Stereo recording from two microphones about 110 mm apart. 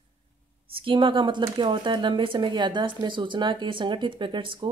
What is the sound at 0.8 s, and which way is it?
Speech, 50° right (ahead or behind).